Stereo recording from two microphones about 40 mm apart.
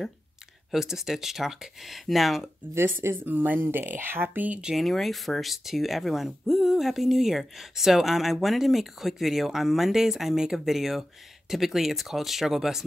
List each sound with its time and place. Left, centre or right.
0.7 s speech: centre
2.7 s speech: right
3.3 s speech: right
4.7 s speech: centre